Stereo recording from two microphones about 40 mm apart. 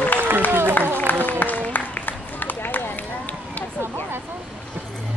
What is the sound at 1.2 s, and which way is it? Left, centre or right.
Run, left.